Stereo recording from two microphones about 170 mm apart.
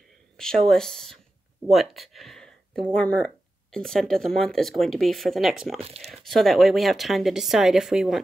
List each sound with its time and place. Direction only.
0.4 s speech: 5° left (ahead or behind)
5.8 s speech: 35° right (ahead or behind)
6.1 s speech: centre (ahead or behind)